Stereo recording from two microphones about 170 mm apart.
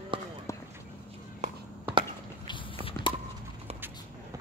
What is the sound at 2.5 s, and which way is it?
Biting, 30° left (ahead or behind).